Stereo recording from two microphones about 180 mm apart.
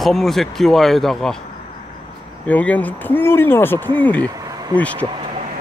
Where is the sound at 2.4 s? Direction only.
10° left (ahead or behind).